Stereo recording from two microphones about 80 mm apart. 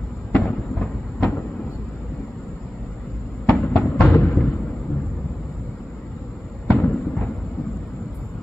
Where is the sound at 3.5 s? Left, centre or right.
Centre.